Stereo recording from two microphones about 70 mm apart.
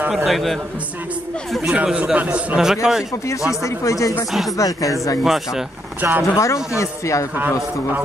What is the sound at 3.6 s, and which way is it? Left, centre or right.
Speech, left.